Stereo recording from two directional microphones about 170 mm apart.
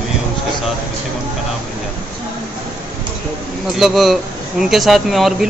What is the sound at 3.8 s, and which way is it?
Speech, centre (ahead or behind).